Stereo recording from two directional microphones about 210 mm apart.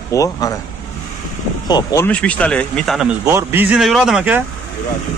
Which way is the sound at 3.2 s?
10° right (ahead or behind).